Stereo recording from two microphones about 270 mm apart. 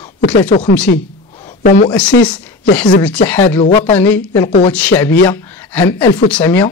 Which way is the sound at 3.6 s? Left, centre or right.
Left.